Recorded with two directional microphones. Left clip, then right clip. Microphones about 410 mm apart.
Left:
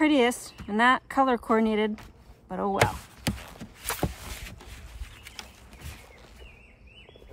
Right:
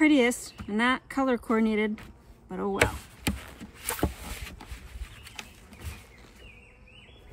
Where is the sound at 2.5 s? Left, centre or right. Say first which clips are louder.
Left 2 dB; centre.